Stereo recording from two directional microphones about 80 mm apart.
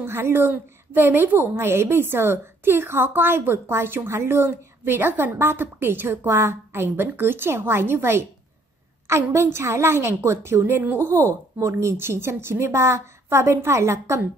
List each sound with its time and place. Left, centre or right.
0.0 s a woman's voice: right
11.2 s a woman's voice: right